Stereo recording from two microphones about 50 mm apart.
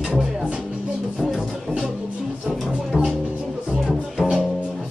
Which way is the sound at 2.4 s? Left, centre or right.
Centre.